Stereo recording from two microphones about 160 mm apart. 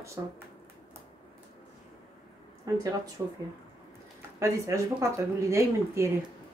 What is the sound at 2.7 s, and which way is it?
Speech, 25° right (ahead or behind).